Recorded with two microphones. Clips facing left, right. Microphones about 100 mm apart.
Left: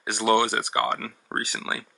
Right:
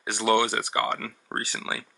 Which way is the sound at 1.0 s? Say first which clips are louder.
Left 2 dB; 40° left (ahead or behind).